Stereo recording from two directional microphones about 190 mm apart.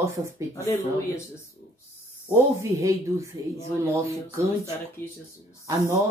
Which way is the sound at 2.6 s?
15° right (ahead or behind).